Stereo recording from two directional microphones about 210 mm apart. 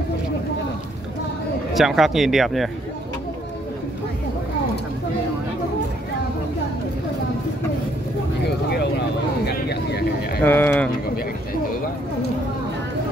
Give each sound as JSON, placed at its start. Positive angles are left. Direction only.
{"t": 1.7, "sound": "speech", "side_deg": 0}
{"t": 8.5, "sound": "vehicle", "side_deg": 50}
{"t": 9.4, "sound": "a sound", "side_deg": 50}
{"t": 10.4, "sound": "speech", "side_deg": 10}